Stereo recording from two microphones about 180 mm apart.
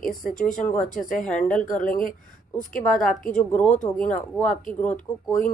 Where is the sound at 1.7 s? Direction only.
50° left (ahead or behind).